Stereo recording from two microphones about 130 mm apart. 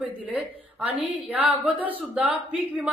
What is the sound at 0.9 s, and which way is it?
A woman's voice, 10° right (ahead or behind).